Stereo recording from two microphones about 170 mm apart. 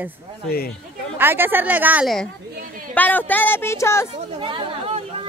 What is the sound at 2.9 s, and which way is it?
Speech, 10° left (ahead or behind).